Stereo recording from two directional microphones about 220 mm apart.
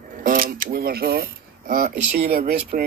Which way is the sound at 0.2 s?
40° right (ahead or behind).